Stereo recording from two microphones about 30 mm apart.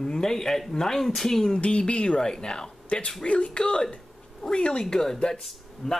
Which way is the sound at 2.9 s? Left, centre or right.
Left.